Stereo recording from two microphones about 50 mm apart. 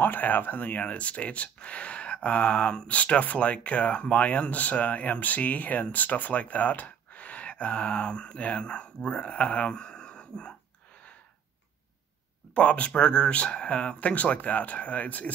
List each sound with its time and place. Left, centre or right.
0.0 s speech: left; by 10.5 s centre
12.5 s speech: left